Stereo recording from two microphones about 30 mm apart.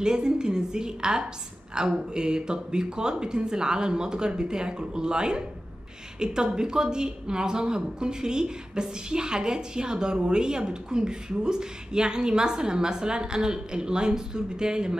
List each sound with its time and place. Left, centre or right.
0.0 s a woman's voice: right